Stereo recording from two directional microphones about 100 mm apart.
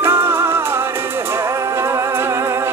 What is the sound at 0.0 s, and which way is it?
Music, 25° right (ahead or behind).